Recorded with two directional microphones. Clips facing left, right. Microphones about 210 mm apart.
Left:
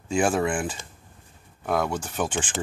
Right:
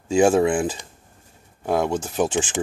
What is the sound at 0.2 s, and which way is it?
Speech, 20° right (ahead or behind).